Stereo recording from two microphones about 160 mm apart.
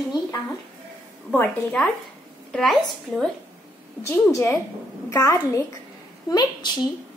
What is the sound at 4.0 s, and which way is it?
A woman's voice, 15° left (ahead or behind).